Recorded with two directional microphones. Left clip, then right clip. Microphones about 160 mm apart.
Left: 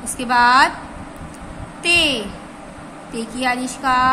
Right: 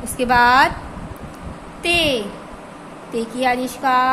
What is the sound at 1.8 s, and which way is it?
A woman's voice, 5° right (ahead or behind).